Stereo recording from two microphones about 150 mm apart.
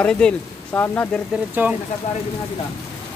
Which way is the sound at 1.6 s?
15° right (ahead or behind).